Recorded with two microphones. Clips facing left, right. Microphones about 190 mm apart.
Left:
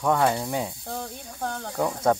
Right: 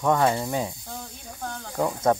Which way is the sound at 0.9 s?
55° left (ahead or behind).